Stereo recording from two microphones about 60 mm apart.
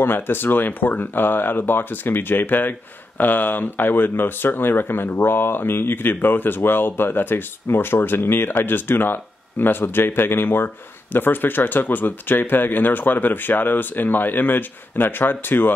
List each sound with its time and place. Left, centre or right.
0.0 s speech: left